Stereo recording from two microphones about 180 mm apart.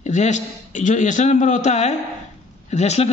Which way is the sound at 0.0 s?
40° left (ahead or behind).